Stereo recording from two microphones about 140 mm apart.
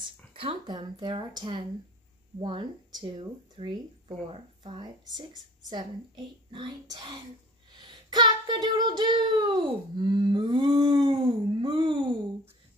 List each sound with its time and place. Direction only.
0.3 s speech: 40° right (ahead or behind)